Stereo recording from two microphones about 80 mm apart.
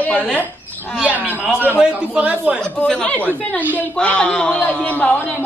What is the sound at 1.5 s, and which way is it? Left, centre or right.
A man's voice, right.